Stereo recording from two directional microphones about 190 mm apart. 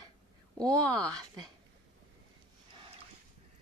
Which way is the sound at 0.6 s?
20° right (ahead or behind).